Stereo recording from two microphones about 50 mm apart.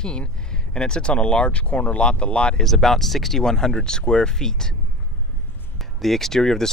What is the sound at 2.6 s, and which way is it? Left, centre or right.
Speech, centre.